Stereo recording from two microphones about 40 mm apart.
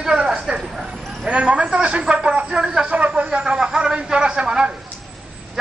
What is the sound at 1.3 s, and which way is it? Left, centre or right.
A man's voice, right.